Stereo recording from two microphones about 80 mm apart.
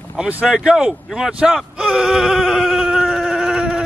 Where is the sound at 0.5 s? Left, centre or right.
Centre.